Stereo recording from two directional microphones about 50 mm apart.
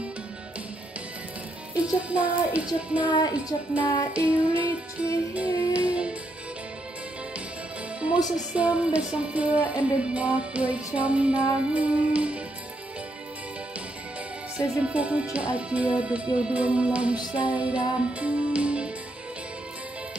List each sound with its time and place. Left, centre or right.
1.8 s speech: right
5.3 s music: right
8.0 s speech: right
14.6 s speech: right